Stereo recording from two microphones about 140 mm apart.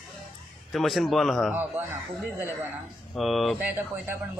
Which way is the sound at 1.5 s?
15° right (ahead or behind).